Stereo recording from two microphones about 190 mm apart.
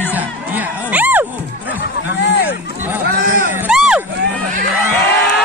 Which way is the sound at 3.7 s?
5° right (ahead or behind).